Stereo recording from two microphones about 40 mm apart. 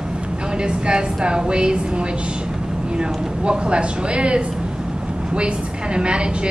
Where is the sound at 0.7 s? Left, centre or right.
Right.